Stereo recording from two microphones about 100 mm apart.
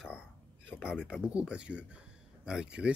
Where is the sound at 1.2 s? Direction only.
10° right (ahead or behind).